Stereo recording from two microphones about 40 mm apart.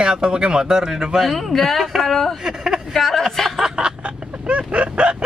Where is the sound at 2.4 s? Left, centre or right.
Centre.